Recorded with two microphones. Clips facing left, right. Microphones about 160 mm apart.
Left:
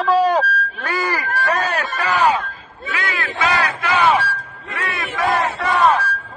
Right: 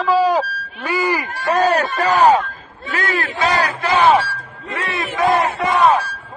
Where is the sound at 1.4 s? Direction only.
35° right (ahead or behind).